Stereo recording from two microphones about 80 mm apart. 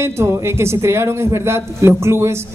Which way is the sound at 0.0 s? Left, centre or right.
Right.